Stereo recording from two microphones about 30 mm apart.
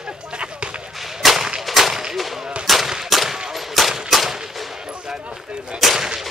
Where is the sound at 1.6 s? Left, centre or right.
Centre.